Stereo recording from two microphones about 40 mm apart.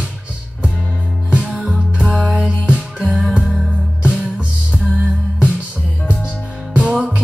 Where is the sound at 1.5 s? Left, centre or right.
Centre.